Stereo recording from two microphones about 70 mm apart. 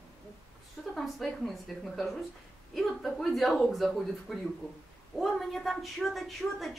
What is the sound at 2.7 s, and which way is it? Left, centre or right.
A woman's voice, centre.